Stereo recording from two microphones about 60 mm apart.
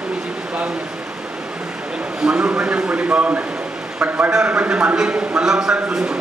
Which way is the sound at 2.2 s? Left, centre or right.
Right.